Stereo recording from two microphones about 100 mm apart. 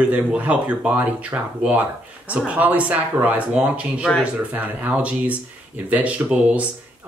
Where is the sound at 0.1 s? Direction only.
15° right (ahead or behind).